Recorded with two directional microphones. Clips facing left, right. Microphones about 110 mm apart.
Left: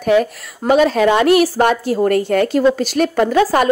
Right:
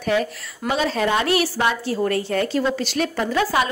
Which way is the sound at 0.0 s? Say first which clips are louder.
Left 7 dB; 50° left (ahead or behind).